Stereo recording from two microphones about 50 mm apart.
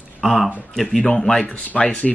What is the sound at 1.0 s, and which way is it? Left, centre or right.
Speech, left.